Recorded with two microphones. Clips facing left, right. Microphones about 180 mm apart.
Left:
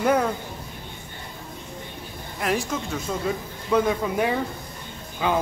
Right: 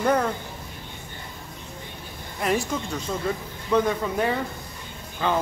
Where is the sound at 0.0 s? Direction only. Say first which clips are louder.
Left 1 dB; 5° left (ahead or behind).